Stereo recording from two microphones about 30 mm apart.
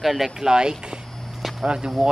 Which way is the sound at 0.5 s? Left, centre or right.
Right.